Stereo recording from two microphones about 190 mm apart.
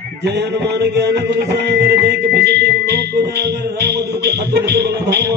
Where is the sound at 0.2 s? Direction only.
60° right (ahead or behind).